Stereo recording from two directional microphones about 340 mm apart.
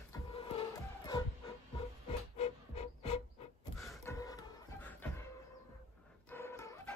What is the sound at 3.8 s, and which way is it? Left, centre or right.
Beatboxing, centre.